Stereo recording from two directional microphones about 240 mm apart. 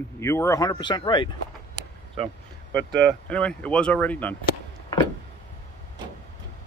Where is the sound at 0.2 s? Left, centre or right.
Centre.